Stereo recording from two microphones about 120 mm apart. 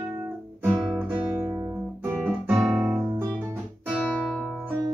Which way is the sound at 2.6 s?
5° right (ahead or behind).